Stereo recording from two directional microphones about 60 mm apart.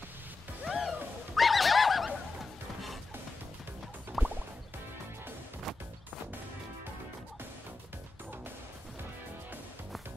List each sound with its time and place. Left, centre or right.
0.7 s music: centre
1.3 s neigh: centre
4.2 s music: right